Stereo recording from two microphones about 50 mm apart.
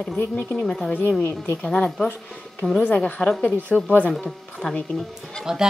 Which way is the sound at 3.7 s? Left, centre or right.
Centre.